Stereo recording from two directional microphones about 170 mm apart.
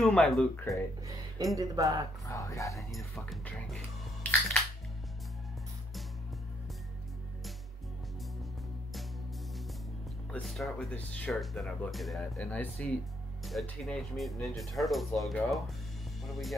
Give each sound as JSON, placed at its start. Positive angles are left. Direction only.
{"t": 0.0, "sound": "speech", "side_deg": 0}
{"t": 1.5, "sound": "speech", "side_deg": -20}
{"t": 2.2, "sound": "speech", "side_deg": 20}
{"t": 2.9, "sound": "speech", "side_deg": 0}
{"t": 10.3, "sound": "speech", "side_deg": 0}